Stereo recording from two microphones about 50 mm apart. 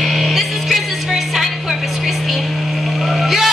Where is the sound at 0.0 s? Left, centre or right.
Centre.